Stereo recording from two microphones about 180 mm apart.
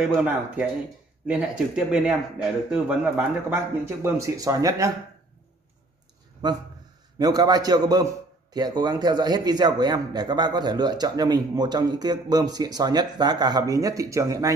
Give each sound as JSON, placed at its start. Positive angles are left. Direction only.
{"t": 0.0, "sound": "a man's voice", "side_deg": -10}
{"t": 7.2, "sound": "a man's voice", "side_deg": -20}